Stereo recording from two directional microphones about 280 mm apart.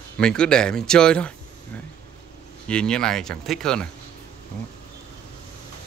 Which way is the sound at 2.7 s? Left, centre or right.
Centre.